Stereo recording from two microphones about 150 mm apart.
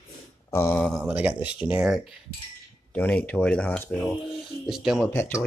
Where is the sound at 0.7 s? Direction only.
5° left (ahead or behind).